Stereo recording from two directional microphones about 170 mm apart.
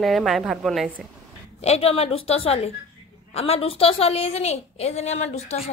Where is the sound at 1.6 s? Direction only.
35° left (ahead or behind).